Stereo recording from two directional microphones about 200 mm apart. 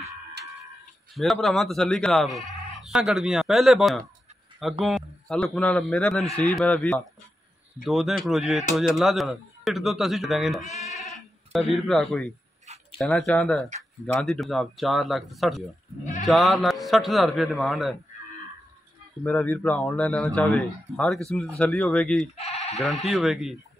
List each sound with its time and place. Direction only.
1.1 s speech: centre (ahead or behind)
10.6 s speech: 35° left (ahead or behind)
11.5 s speech: centre (ahead or behind)
16.0 s speech: 35° left (ahead or behind)
16.3 s speech: centre (ahead or behind)
19.2 s speech: 10° left (ahead or behind)
22.3 s sheep: 35° left (ahead or behind)
22.8 s speech: centre (ahead or behind)